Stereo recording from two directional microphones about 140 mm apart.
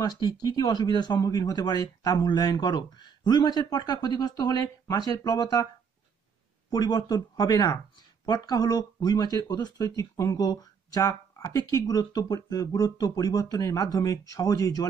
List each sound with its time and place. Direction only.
0.0 s speech: 30° left (ahead or behind)
6.7 s speech: 30° left (ahead or behind)